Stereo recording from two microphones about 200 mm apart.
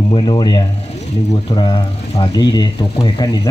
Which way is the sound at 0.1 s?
20° left (ahead or behind).